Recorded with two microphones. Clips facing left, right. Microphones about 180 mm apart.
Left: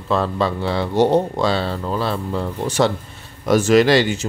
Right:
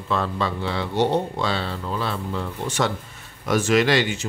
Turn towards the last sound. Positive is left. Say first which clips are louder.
# left 5 dB
turn(degrees=40)  # may be behind; listen again after turning